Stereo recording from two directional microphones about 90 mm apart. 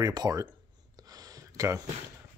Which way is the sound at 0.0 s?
45° right (ahead or behind).